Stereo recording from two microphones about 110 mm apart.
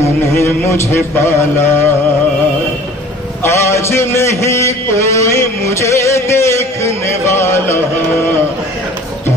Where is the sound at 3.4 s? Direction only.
25° left (ahead or behind).